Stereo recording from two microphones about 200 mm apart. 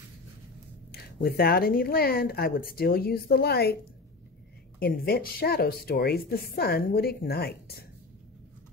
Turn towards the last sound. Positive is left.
turn(degrees=50)  # may be behind; listen again after turning